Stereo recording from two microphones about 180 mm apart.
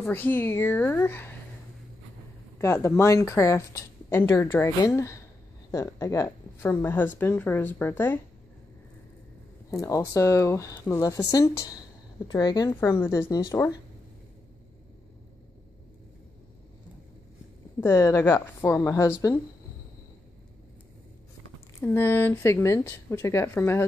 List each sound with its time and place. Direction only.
0.0 s a woman's voice: 10° left (ahead or behind)
2.6 s a woman's voice: 15° left (ahead or behind)
9.7 s a woman's voice: 20° left (ahead or behind)
17.7 s a woman's voice: 15° left (ahead or behind)
21.7 s a woman's voice: 15° left (ahead or behind)